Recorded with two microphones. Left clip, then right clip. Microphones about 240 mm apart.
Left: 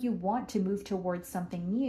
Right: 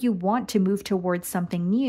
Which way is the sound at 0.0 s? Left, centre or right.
Right.